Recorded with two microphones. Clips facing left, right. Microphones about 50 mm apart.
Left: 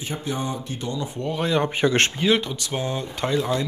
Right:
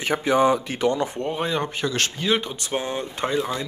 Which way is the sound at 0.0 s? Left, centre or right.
Right.